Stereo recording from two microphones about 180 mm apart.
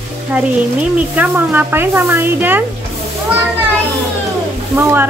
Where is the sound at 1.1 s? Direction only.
10° right (ahead or behind).